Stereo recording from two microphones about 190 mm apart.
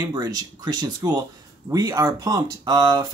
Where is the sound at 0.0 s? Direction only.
20° right (ahead or behind).